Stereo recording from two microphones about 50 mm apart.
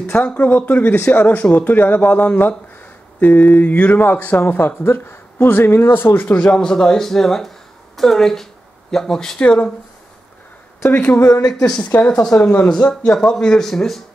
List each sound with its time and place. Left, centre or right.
0.0 s speech: left
6.2 s speech: left
6.5 s speech: centre
10.9 s speech: left
11.1 s speech: left
11.6 s speech: centre
12.1 s speech: left; by 14.0 s centre